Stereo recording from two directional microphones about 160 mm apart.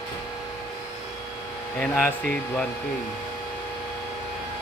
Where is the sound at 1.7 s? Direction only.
10° left (ahead or behind).